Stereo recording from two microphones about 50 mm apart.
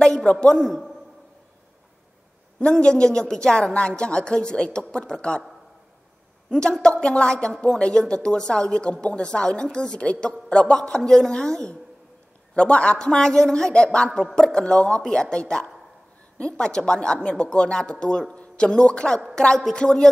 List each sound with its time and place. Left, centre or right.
0.0 s a sound: centre
0.3 s a woman's voice: centre
2.6 s a woman's voice: centre
6.5 s a woman's voice: centre